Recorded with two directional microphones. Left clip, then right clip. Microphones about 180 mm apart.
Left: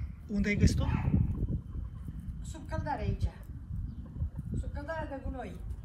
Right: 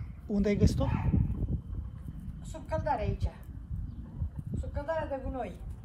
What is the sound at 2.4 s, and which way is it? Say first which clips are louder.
Speech: right 6 dB; 35° right (ahead or behind).